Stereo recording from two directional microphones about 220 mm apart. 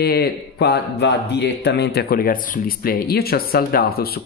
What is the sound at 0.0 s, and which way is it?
Speech, 45° left (ahead or behind).